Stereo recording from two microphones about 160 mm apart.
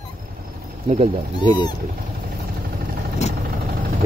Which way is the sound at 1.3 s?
25° left (ahead or behind).